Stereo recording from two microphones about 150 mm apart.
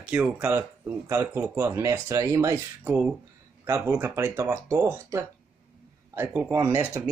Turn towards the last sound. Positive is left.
turn(degrees=-15)  # may be behind; listen again after turning